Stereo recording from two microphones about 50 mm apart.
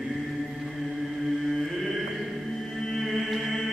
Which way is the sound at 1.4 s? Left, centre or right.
Centre.